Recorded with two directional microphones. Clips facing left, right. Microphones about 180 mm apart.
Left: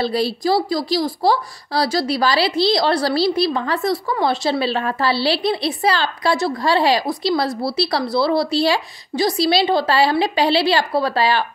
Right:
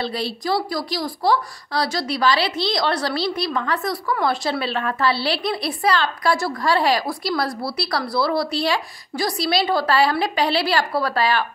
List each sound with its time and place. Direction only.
0.0 s a woman's voice: 35° left (ahead or behind)